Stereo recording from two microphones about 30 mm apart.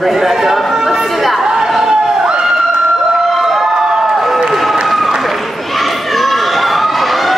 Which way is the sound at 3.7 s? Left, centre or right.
Centre.